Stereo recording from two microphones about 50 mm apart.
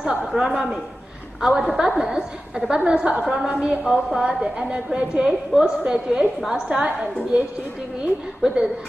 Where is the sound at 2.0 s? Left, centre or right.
Centre.